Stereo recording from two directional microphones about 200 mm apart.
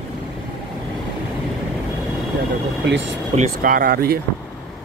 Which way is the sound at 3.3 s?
45° right (ahead or behind).